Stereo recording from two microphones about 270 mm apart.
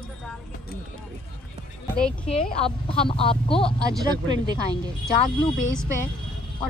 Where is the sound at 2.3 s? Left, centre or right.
Left.